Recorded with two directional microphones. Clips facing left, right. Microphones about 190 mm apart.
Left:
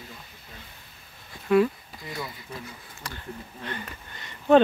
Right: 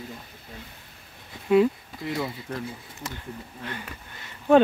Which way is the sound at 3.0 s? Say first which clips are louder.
Right 3 dB; 20° right (ahead or behind).